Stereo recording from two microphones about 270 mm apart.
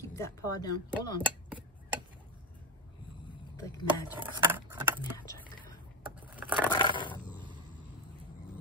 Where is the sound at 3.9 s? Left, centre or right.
Centre.